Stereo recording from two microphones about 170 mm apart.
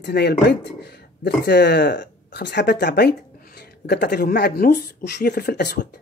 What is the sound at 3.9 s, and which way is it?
Speech, 70° left (ahead or behind).